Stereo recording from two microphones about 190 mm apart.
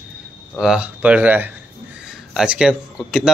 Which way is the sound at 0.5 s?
5° right (ahead or behind).